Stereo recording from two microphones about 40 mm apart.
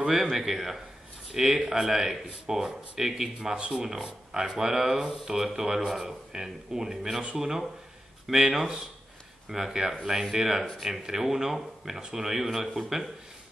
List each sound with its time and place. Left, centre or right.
0.0 s speech: centre
3.5 s speech: right; by 13.1 s centre